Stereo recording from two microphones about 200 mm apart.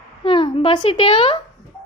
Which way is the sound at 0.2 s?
25° left (ahead or behind).